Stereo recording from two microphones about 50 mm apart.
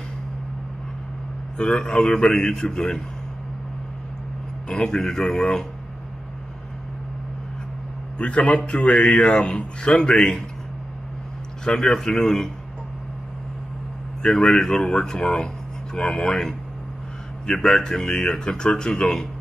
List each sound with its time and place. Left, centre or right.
1.6 s speech: centre
4.6 s speech: centre
8.2 s a man's voice: left
11.6 s speech: centre
14.2 s speech: centre
17.6 s speech: centre